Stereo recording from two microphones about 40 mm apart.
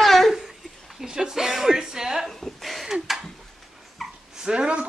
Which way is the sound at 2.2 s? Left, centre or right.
Centre.